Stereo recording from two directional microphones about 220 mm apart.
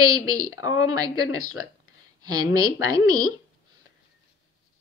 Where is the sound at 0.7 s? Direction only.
70° left (ahead or behind).